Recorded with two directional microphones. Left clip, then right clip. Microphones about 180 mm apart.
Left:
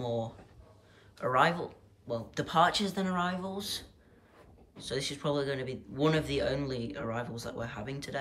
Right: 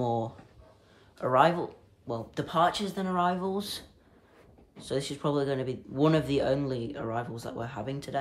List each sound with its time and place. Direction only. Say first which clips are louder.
0.0 s a sound: right 4 dB; 15° right (ahead or behind)
1.2 s speech: right 4 dB; 15° right (ahead or behind)
3.5 s speech: right 3 dB; 30° right (ahead or behind)
4.7 s speech: right 2 dB; 15° right (ahead or behind)